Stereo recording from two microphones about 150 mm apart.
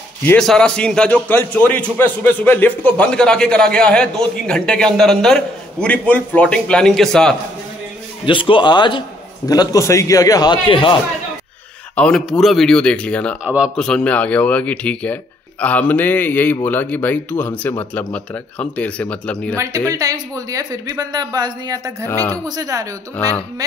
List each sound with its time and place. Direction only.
0.4 s a man's voice: 5° left (ahead or behind)
8.3 s a man's voice: 35° left (ahead or behind)
11.9 s a man's voice: 10° left (ahead or behind)
13.4 s a man's voice: 5° right (ahead or behind)
13.7 s speech: 5° left (ahead or behind)
19.5 s speech: 20° right (ahead or behind)